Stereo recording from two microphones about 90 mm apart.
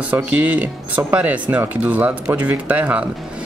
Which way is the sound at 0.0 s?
15° right (ahead or behind).